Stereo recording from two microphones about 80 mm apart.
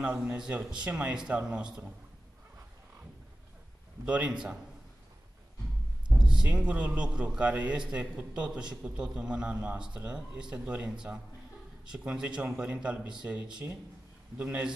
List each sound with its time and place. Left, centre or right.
0.0 s a man's voice: centre
4.0 s a man's voice: centre
6.0 s a man's voice: centre